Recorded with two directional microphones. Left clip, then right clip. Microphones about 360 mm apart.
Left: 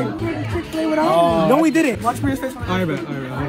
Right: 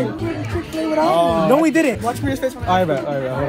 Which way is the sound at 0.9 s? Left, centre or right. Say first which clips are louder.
Even; centre.